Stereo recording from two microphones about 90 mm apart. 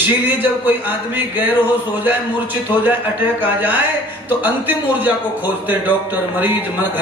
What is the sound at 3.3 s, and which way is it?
A man's voice, 20° right (ahead or behind).